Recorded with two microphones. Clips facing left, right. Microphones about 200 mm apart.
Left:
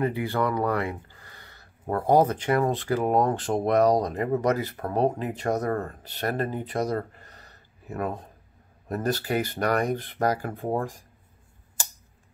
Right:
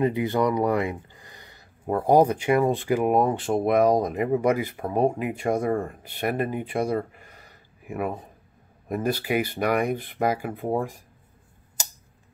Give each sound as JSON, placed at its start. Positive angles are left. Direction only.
{"t": 0.0, "sound": "speech", "side_deg": -20}